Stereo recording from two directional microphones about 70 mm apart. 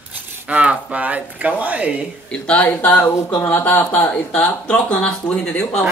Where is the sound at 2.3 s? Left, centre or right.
Centre.